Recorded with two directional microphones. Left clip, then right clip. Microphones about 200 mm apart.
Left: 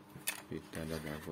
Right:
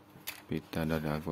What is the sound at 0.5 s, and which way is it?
Speech, 40° right (ahead or behind).